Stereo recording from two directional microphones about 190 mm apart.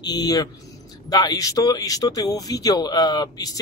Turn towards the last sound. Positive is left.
turn(degrees=20)  # may be behind; listen again after turning